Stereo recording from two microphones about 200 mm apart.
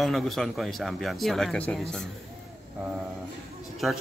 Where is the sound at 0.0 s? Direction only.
Centre (ahead or behind).